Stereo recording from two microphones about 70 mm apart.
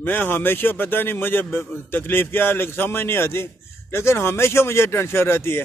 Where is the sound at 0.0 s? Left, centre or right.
Left.